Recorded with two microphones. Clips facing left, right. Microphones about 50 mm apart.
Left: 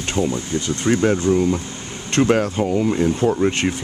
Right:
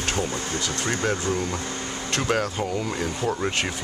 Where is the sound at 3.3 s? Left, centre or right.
Centre.